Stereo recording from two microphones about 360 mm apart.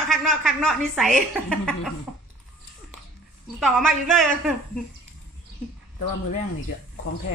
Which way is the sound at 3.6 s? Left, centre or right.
Centre.